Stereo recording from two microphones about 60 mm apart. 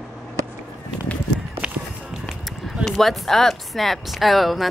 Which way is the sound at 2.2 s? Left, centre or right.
Centre.